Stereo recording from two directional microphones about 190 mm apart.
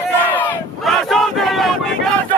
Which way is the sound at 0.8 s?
Centre (ahead or behind).